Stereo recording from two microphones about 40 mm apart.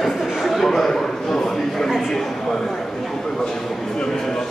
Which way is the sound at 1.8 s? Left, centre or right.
Centre.